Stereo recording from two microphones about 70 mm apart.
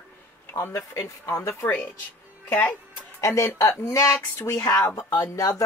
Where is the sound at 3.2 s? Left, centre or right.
Left.